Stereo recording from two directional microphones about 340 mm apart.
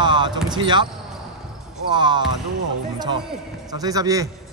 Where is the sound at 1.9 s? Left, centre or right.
Centre.